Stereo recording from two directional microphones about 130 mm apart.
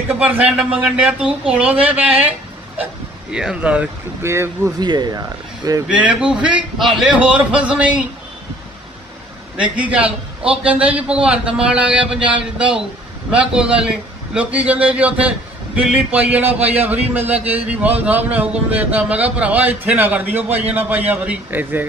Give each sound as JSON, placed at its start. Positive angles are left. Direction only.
{"t": 0.3, "sound": "a man's voice", "side_deg": -10}
{"t": 4.2, "sound": "speech", "side_deg": -20}
{"t": 4.7, "sound": "speech", "side_deg": -35}
{"t": 5.9, "sound": "a man's voice", "side_deg": -10}
{"t": 9.6, "sound": "a man's voice", "side_deg": -10}